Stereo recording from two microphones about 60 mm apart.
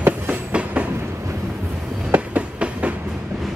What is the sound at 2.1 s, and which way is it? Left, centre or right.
Train, right.